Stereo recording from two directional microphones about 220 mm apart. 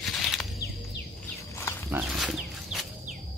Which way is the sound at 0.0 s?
Centre (ahead or behind).